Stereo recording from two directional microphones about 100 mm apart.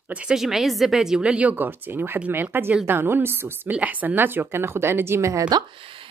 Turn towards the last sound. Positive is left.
turn(degrees=-30)  # may be behind; listen again after turning